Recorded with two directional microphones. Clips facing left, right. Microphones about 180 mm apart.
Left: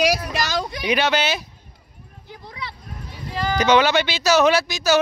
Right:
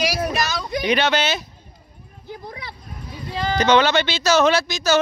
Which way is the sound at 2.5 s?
50° right (ahead or behind).